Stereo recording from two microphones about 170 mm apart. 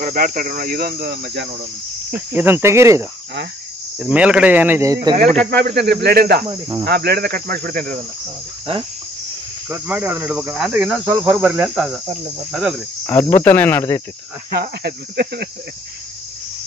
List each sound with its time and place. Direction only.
0.0 s cricket: 55° right (ahead or behind); by 1.5 s 75° right (ahead or behind)
2.1 s cricket: 10° right (ahead or behind)
5.2 s speech: 5° left (ahead or behind)
5.5 s speech: 70° right (ahead or behind)
6.4 s cricket: 20° right (ahead or behind)
6.9 s cricket: 65° right (ahead or behind)
9.7 s cricket: 10° right (ahead or behind)
13.0 s cricket: 15° left (ahead or behind)
13.4 s speech: 10° left (ahead or behind)
14.6 s speech: 70° right (ahead or behind)